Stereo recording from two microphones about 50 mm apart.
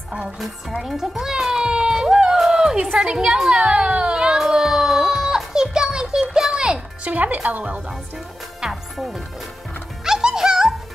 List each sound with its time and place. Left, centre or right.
0.8 s a child's voice: centre
4.4 s music: centre
7.1 s speech: right
8.5 s music: centre